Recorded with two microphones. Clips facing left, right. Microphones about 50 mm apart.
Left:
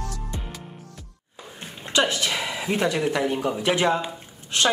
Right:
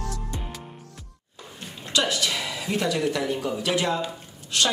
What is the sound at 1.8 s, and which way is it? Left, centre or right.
A woman's voice, left.